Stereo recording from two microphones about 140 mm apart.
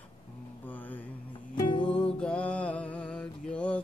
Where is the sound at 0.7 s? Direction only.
10° left (ahead or behind).